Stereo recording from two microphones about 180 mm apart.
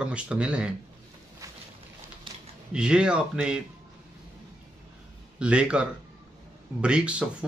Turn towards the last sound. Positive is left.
turn(degrees=-5)  # may be behind; listen again after turning